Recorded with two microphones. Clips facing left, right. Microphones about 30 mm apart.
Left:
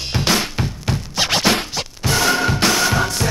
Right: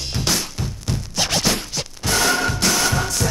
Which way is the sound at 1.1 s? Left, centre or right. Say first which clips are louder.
Left 3 dB; left.